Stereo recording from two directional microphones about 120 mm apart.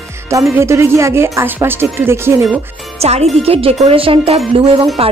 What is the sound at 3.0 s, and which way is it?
Speech, 60° right (ahead or behind).